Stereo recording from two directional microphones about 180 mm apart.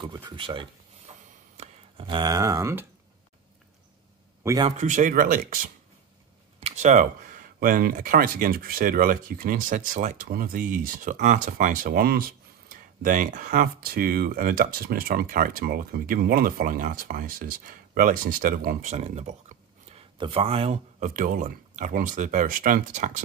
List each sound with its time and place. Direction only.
0.0 s speech: 25° right (ahead or behind)
4.4 s a man's voice: 15° right (ahead or behind)
4.6 s speech: 40° right (ahead or behind)